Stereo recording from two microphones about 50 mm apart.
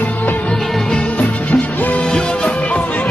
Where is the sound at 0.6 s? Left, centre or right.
Centre.